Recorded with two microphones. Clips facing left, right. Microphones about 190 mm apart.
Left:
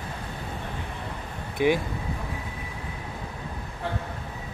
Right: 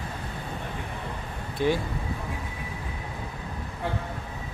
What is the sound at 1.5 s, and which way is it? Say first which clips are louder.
Speech: left 2 dB; 15° left (ahead or behind).